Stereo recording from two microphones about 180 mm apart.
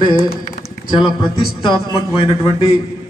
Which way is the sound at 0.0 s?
30° left (ahead or behind).